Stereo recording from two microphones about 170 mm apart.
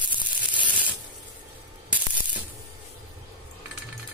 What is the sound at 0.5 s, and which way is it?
Sanding, 10° right (ahead or behind).